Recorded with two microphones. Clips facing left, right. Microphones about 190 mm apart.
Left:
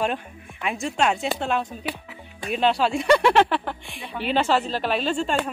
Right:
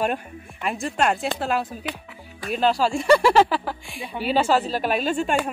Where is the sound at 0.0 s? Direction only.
5° right (ahead or behind).